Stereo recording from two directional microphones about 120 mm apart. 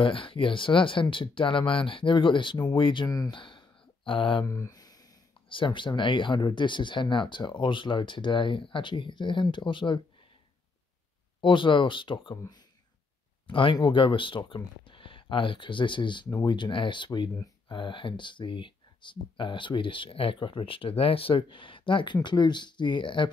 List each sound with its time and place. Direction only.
0.0 s speech: 45° left (ahead or behind)
3.1 s speech: 30° left (ahead or behind)
3.3 s a sound: 45° left (ahead or behind)
4.5 s a sound: 30° left (ahead or behind)
5.5 s speech: 45° left (ahead or behind)
11.4 s speech: 45° left (ahead or behind)